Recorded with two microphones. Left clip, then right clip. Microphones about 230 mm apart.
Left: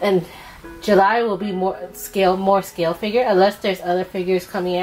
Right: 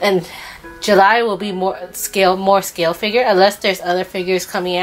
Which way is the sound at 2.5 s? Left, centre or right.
Centre.